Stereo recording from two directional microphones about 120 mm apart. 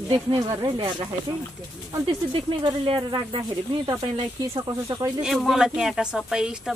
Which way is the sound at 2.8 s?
45° right (ahead or behind).